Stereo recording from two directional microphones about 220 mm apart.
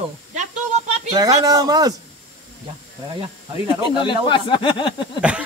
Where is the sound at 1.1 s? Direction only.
15° right (ahead or behind).